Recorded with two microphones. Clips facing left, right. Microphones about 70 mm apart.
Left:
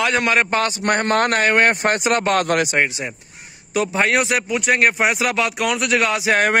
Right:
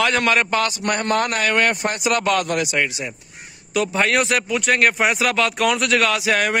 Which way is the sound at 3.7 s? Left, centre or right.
Centre.